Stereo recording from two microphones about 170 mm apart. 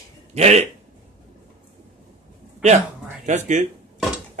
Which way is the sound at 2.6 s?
40° right (ahead or behind).